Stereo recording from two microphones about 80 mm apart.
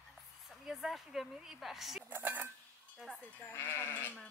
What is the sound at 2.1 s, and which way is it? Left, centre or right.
Speech, right.